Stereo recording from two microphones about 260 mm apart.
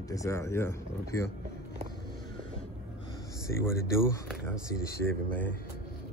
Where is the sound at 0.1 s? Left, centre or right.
Centre.